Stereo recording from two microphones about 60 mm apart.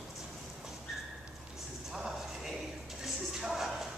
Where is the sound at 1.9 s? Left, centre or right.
Centre.